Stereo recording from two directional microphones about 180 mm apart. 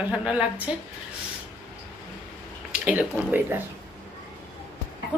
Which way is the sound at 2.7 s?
10° right (ahead or behind).